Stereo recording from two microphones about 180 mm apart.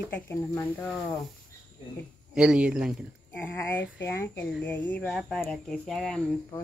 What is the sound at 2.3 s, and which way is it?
Speech, 5° right (ahead or behind).